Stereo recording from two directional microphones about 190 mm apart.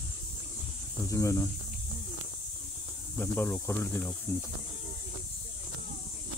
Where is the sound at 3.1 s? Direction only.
10° left (ahead or behind).